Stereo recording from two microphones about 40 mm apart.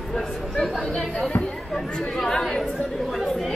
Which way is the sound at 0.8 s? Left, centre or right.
Centre.